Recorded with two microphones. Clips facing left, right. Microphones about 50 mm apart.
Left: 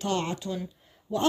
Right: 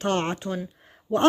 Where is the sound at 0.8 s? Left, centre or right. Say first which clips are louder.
Right 5 dB; right.